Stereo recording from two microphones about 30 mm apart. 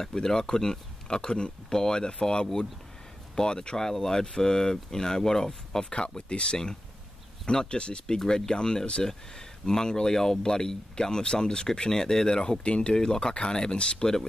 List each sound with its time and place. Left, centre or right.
0.0 s speech: left
5.9 s speech: left
8.2 s speech: centre
8.5 s speech: left
12.6 s speech: left
12.9 s speech: left